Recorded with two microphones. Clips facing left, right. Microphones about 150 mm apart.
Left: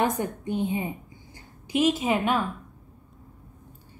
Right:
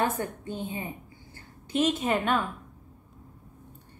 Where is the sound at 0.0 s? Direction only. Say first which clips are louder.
Left 3 dB; 15° left (ahead or behind).